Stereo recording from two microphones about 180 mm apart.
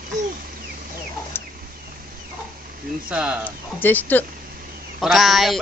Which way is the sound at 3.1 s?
5° right (ahead or behind).